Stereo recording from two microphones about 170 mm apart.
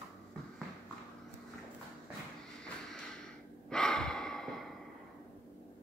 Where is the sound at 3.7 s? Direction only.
5° left (ahead or behind).